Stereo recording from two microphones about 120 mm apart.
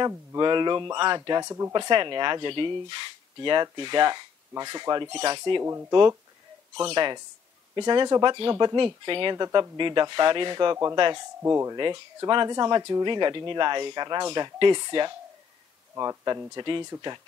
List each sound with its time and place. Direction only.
0.4 s speech: 40° right (ahead or behind)
1.4 s speech: 25° right (ahead or behind)
1.7 s speech: 40° right (ahead or behind)
5.6 s speech: 20° right (ahead or behind)
5.9 s speech: 35° right (ahead or behind)
11.4 s speech: 20° right (ahead or behind)
11.7 s speech: 35° right (ahead or behind)